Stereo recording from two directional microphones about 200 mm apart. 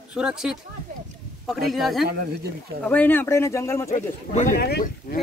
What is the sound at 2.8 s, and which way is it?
Speech, 10° left (ahead or behind).